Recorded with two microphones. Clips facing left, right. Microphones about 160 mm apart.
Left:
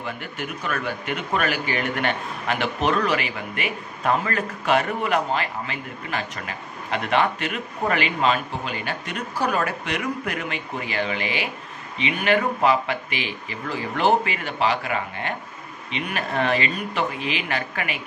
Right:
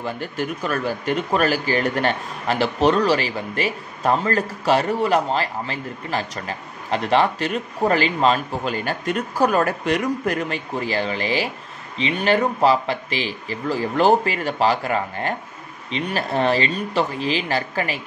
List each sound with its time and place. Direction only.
0.0 s speech: 35° right (ahead or behind)